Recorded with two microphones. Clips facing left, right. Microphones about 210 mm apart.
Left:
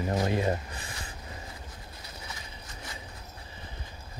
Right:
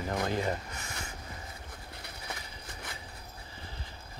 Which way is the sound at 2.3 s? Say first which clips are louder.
Right 5 dB; 60° right (ahead or behind).